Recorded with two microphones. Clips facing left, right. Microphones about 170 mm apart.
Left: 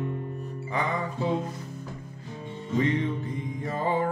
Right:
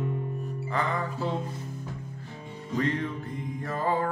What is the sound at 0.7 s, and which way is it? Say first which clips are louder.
Music: left 1 dB; 20° left (ahead or behind).